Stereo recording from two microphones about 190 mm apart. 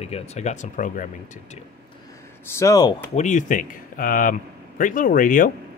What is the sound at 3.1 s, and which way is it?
Speech, 40° left (ahead or behind).